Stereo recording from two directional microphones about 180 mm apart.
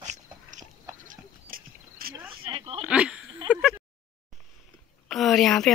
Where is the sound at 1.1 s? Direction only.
55° right (ahead or behind).